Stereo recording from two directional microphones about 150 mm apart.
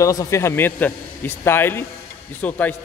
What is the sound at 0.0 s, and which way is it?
A man's voice, 20° left (ahead or behind).